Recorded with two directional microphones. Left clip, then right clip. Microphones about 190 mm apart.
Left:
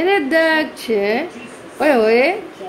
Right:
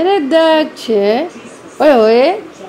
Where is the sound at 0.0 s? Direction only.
20° right (ahead or behind).